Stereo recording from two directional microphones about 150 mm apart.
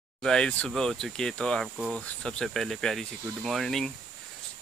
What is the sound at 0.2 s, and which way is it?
Speech, 5° left (ahead or behind).